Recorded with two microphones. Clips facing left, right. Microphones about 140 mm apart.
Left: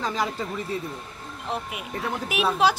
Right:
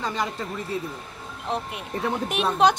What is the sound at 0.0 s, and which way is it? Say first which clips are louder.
A woman's voice: left 1 dB; centre (ahead or behind).